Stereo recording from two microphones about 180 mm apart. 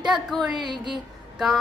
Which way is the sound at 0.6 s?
25° right (ahead or behind).